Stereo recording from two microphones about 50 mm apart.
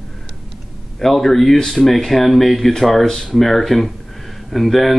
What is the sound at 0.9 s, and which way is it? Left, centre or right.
Speech, centre.